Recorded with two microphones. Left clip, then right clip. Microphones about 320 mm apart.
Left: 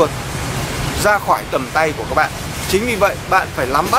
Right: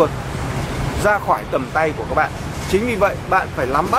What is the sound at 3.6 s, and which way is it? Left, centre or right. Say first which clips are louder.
Speech: left 2 dB; centre.